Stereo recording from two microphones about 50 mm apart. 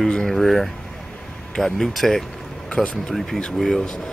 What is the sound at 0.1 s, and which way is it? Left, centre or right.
Speech, centre.